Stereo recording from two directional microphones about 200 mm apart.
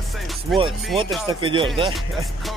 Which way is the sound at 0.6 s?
Centre (ahead or behind).